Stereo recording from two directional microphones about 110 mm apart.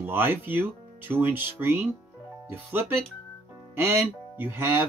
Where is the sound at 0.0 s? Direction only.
20° right (ahead or behind).